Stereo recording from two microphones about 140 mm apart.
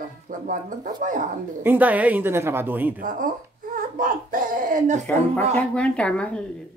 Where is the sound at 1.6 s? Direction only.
10° right (ahead or behind).